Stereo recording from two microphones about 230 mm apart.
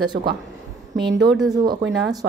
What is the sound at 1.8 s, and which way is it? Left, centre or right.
Speech, right.